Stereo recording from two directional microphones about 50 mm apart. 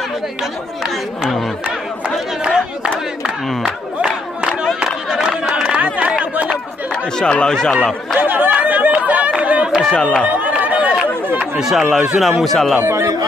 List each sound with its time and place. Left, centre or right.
2.0 s speech: centre
4.7 s crowd: centre
5.9 s a sound: right
7.2 s speech: centre
8.2 s chatter: right
9.4 s a sound: right
9.9 s speech: centre
10.2 s run: right
11.6 s a man's voice: centre
12.8 s speech: right